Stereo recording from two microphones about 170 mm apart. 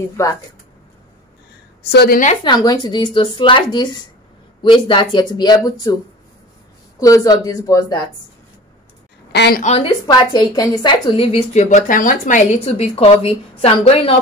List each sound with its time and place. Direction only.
0.2 s speech: 15° left (ahead or behind)
1.9 s a woman's voice: 70° left (ahead or behind)
2.4 s speech: 25° left (ahead or behind)
7.0 s speech: 20° left (ahead or behind)
9.3 s a woman's voice: 80° left
9.6 s speech: 40° left (ahead or behind)
10.0 s speech: 25° left (ahead or behind)